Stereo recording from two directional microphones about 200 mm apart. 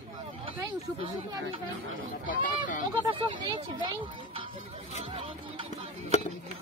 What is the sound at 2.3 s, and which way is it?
Speech, 45° left (ahead or behind).